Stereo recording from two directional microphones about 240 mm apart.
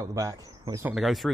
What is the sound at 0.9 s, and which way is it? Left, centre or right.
Speech, centre.